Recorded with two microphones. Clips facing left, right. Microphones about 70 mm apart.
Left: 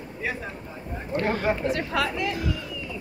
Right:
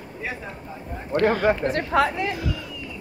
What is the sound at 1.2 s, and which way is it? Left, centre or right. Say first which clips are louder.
Speech: right 5 dB; right.